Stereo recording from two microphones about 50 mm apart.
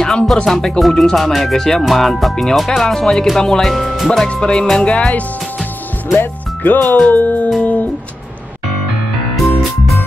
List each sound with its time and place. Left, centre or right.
0.0 s music: centre
4.3 s music: centre
6.1 s speech: left
7.1 s music: left